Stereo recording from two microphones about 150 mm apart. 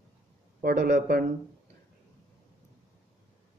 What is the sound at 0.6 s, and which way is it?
Speech, 85° right.